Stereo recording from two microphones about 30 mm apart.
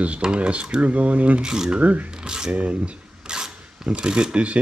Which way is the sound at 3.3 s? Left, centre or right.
Right.